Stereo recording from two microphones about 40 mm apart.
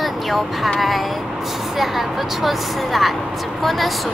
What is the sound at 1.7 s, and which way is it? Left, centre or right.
A woman's voice, centre.